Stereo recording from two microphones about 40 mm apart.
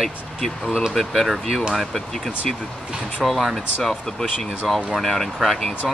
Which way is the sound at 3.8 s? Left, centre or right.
Centre.